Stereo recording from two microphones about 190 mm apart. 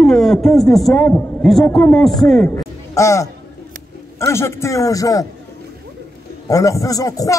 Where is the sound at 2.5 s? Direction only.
15° left (ahead or behind).